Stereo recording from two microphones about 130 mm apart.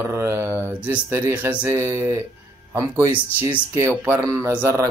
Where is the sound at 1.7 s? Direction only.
20° right (ahead or behind).